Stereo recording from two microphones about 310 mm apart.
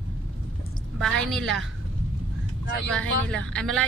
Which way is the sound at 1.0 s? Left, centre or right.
Centre.